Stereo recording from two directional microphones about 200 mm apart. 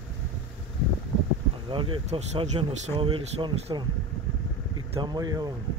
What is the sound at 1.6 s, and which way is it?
Speech, 25° right (ahead or behind).